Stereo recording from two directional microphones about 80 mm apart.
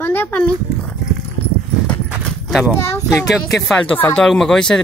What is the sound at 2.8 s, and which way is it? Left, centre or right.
Speech, left.